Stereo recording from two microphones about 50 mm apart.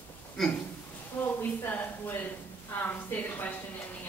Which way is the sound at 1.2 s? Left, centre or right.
Left.